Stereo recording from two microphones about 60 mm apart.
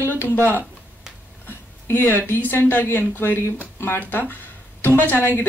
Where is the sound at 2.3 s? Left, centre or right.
Left.